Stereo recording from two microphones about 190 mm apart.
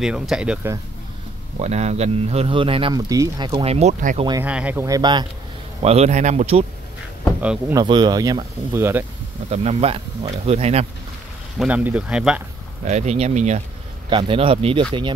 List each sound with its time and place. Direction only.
0.0 s speech: 5° right (ahead or behind)
1.6 s speech: 35° right (ahead or behind)
4.4 s speech: 5° right (ahead or behind)
5.8 s speech: 35° right (ahead or behind)
7.7 s speech: 25° right (ahead or behind)
9.5 s speech: 35° right (ahead or behind)
11.5 s speech: 5° right (ahead or behind)
12.8 s speech: 35° right (ahead or behind)
14.1 s speech: 25° right (ahead or behind)